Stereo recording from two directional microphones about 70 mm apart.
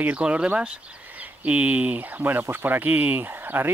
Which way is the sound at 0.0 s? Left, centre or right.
Centre.